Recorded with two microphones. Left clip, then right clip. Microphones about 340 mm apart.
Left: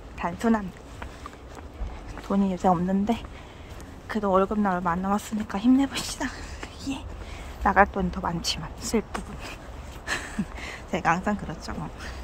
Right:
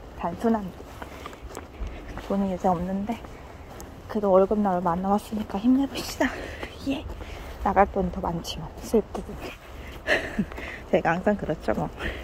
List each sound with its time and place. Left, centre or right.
0.2 s speech: centre
2.2 s speech: centre
6.0 s speech: centre
7.6 s speech: centre
10.0 s a woman's voice: centre